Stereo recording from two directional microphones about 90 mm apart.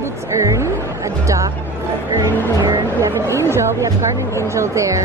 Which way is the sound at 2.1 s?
50° right (ahead or behind).